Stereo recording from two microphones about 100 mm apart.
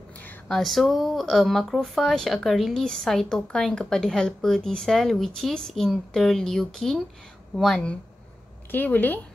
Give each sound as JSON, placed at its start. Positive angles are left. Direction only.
{"t": 0.5, "sound": "speech", "side_deg": 0}